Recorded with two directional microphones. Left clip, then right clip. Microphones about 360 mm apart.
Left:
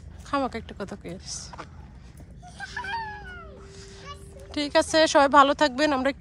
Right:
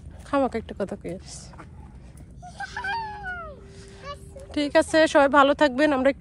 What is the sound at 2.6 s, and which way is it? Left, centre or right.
Honk, centre.